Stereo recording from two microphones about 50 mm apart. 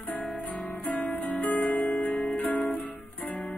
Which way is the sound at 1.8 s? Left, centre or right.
Centre.